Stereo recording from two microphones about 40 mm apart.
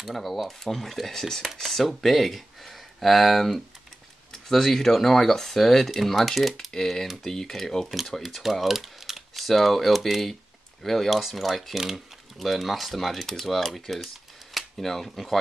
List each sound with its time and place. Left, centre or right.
0.1 s speech: centre
13.7 s a sound: centre
14.8 s speech: centre